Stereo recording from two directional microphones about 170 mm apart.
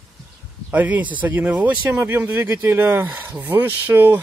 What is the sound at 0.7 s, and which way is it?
Speech, 10° right (ahead or behind).